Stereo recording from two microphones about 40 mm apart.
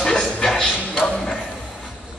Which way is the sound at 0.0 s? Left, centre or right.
Centre.